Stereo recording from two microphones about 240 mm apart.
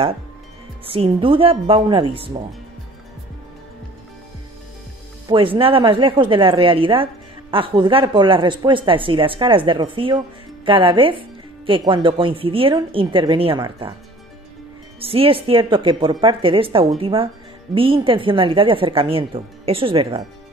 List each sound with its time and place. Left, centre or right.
0.8 s speech: right
5.3 s speech: right
15.0 s speech: right